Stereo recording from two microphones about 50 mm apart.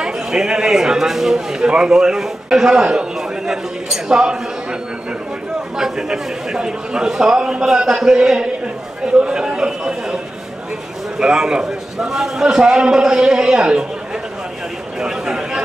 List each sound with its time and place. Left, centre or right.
0.0 s a man's voice: centre
5.8 s a man's voice: centre
11.1 s a man's voice: centre
15.0 s a sound: centre